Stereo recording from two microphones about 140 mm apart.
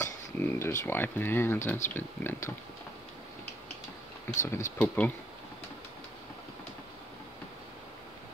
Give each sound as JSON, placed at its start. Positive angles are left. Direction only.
{"t": 0.0, "sound": "speech", "side_deg": 20}
{"t": 4.5, "sound": "speech", "side_deg": 15}